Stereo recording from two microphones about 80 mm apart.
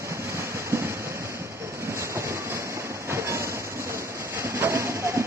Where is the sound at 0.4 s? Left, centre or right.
Right.